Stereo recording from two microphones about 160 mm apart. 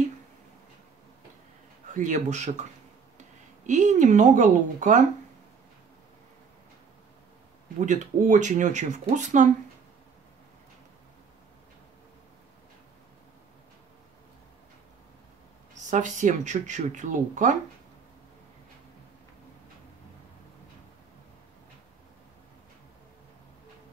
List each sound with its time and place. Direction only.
2.0 s speech: 50° right (ahead or behind)
3.6 s speech: 50° right (ahead or behind)
7.8 s speech: 50° right (ahead or behind)
15.9 s speech: 50° right (ahead or behind)